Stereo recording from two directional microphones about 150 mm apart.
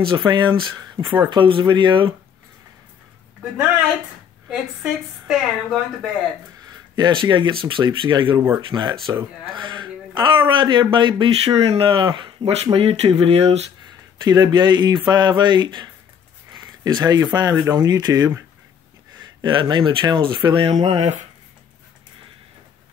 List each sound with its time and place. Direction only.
0.0 s speech: 35° right (ahead or behind)
4.5 s a woman's voice: 5° right (ahead or behind)
6.7 s speech: 30° right (ahead or behind)
14.2 s speech: 25° right (ahead or behind)
19.4 s speech: 30° right (ahead or behind)
20.7 s speech: 45° right (ahead or behind)